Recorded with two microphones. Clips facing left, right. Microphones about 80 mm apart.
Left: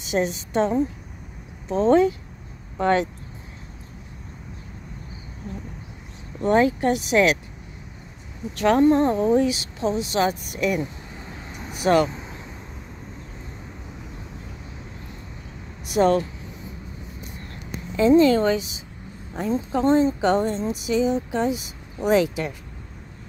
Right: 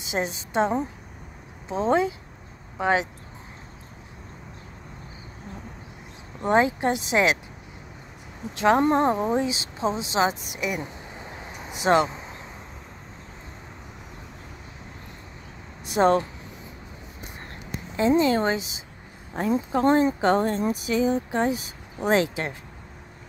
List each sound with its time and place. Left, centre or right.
0.0 s a sound: right
0.5 s speech: right
1.7 s speech: centre
6.4 s speech: right
8.5 s speech: right
11.3 s vehicle: right
15.8 s speech: right
17.9 s speech: right
19.3 s speech: right
20.8 s speech: right